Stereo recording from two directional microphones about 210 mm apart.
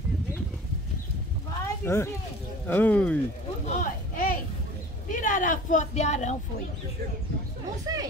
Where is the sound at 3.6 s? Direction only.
40° left (ahead or behind).